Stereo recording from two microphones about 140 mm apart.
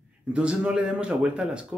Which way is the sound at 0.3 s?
5° right (ahead or behind).